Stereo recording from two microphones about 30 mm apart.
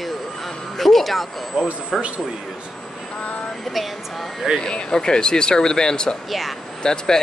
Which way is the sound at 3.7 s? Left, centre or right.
Centre.